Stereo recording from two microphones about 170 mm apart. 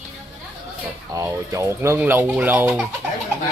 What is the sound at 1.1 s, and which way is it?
Speech, 15° right (ahead or behind).